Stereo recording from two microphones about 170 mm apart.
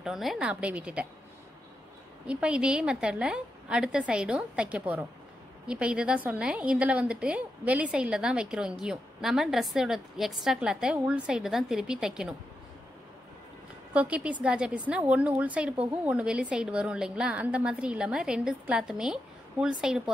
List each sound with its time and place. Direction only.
0.0 s a woman's voice: centre (ahead or behind)
2.2 s a woman's voice: 5° right (ahead or behind)
13.9 s a woman's voice: 5° right (ahead or behind)